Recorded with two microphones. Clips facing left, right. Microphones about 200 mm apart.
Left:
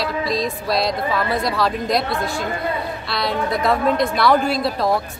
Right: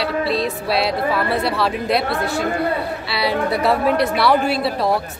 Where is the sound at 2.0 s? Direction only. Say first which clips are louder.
Right 2 dB; 65° right (ahead or behind).